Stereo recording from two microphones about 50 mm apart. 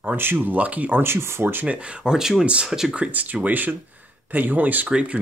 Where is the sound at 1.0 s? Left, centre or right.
Right.